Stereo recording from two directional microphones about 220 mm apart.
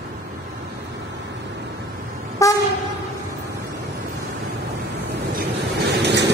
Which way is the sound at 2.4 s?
15° left (ahead or behind).